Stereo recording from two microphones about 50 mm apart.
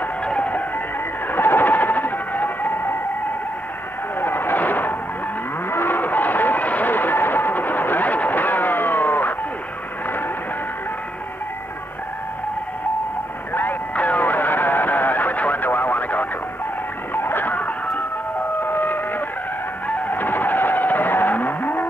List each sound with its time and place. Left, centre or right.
0.2 s music: centre
1.3 s a sound: left
4.2 s vehicle: left
5.7 s a sound: left
13.5 s music: left
17.1 s music: left
17.6 s music: left
18.6 s a sound: left
20.1 s vehicle: left